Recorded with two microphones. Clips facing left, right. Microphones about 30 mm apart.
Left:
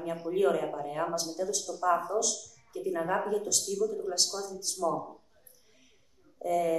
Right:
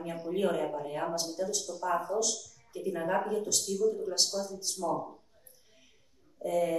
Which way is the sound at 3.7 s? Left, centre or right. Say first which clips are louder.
Right 3 dB; centre.